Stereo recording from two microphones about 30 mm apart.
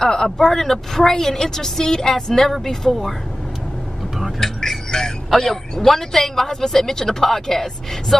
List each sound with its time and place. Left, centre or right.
0.0 s a woman's voice: centre
4.9 s speech: left
5.4 s a woman's voice: centre